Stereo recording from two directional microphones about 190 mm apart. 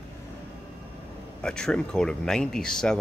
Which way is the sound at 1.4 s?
5° left (ahead or behind).